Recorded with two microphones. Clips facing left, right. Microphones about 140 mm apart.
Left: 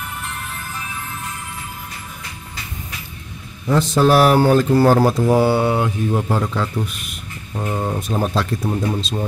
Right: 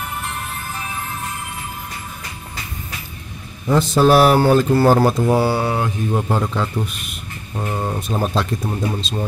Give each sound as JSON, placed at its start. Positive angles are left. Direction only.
{"t": 3.6, "sound": "speech", "side_deg": -10}